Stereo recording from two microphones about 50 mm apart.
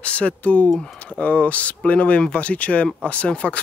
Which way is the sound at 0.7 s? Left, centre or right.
Centre.